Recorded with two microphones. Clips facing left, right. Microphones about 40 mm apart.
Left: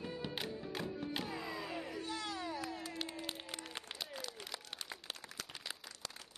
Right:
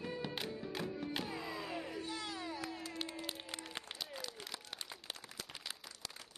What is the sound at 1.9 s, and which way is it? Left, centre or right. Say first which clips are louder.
Music: left 1 dB; centre.